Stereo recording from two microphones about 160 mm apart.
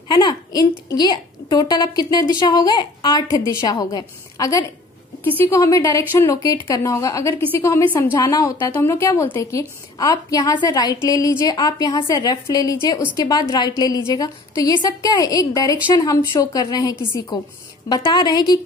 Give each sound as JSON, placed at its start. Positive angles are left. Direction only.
{"t": 0.1, "sound": "a woman's voice", "side_deg": 25}